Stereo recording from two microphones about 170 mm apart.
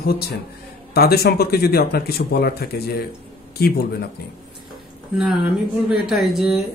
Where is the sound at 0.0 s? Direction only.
65° left (ahead or behind).